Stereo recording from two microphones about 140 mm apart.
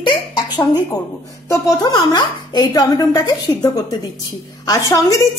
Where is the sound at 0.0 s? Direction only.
30° left (ahead or behind).